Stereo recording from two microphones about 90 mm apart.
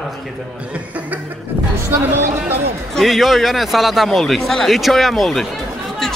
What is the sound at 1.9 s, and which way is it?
Speech, 25° right (ahead or behind).